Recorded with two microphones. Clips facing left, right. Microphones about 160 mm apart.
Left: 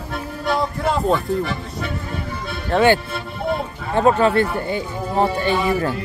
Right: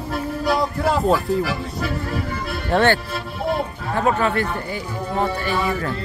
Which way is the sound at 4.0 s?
30° left (ahead or behind).